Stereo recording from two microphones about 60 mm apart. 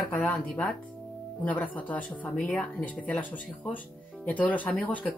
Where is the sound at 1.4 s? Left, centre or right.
Left.